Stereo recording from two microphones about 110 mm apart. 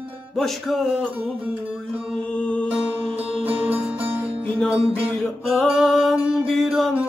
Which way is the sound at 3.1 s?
60° right (ahead or behind).